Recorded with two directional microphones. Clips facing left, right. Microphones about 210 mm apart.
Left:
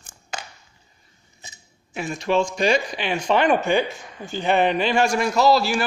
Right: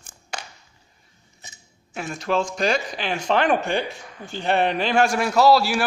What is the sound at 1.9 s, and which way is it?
A man's voice, 5° left (ahead or behind).